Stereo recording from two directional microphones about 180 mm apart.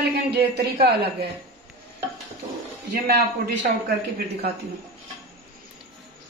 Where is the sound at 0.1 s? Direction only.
65° right (ahead or behind).